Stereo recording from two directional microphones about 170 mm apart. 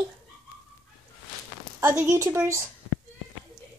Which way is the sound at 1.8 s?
15° right (ahead or behind).